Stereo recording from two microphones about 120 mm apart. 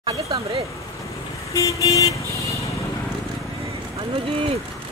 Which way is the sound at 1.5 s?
25° left (ahead or behind).